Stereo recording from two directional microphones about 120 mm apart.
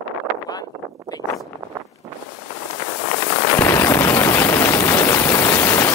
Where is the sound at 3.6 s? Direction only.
20° left (ahead or behind).